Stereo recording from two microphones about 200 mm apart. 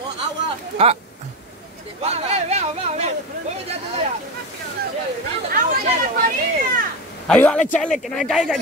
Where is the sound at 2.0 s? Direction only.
30° right (ahead or behind).